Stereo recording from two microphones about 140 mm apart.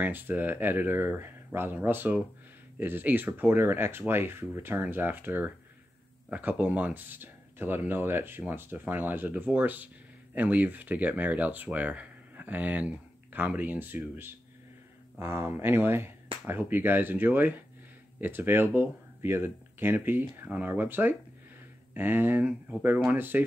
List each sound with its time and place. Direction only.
0.0 s speech: 15° right (ahead or behind)